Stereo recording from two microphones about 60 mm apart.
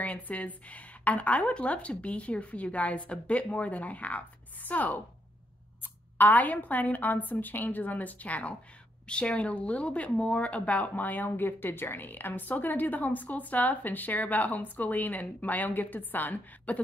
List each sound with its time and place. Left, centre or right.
0.0 s speech: left
6.1 s speech: left